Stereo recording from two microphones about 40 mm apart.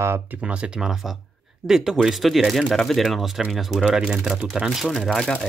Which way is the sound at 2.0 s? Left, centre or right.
Centre.